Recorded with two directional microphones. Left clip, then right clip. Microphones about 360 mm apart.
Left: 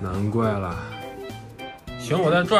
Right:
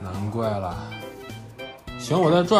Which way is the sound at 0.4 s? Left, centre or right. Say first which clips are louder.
Even; centre.